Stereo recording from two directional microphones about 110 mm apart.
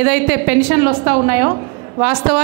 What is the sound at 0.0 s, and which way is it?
A woman's voice, 20° right (ahead or behind).